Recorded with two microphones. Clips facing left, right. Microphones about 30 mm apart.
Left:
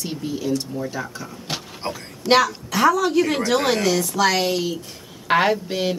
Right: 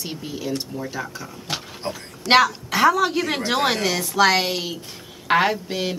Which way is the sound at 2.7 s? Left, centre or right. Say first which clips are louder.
Left 1 dB; centre.